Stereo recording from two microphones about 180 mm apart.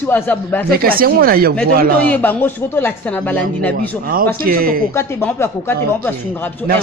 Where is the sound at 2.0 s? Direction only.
10° left (ahead or behind).